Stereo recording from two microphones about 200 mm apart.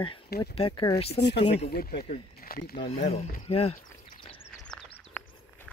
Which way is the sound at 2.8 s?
35° left (ahead or behind).